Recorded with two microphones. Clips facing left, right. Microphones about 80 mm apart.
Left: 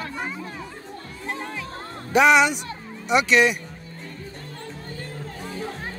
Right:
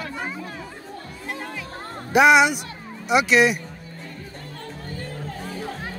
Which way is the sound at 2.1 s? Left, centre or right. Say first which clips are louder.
Right 2 dB; centre.